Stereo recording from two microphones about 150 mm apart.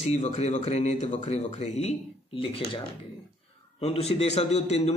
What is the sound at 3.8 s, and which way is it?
Speech, 40° left (ahead or behind).